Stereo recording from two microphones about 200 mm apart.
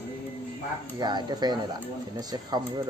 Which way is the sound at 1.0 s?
20° right (ahead or behind).